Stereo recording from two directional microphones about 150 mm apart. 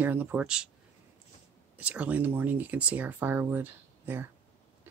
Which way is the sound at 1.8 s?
10° right (ahead or behind).